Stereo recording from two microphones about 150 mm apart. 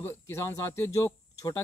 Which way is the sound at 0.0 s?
15° left (ahead or behind).